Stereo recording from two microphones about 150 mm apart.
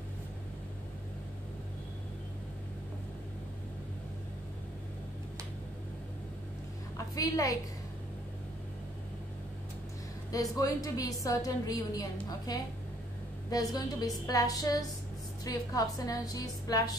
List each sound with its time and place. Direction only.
7.2 s a woman's voice: 20° left (ahead or behind)
10.3 s a woman's voice: 25° left (ahead or behind)